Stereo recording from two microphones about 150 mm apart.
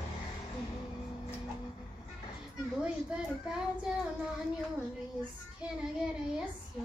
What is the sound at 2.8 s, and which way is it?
Children playing, 5° right (ahead or behind).